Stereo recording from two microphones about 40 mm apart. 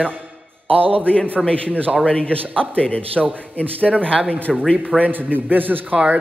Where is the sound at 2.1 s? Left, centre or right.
Left.